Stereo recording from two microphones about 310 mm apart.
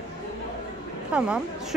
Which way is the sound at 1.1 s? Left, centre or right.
Centre.